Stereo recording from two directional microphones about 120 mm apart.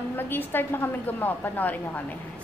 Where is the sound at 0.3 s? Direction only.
15° left (ahead or behind).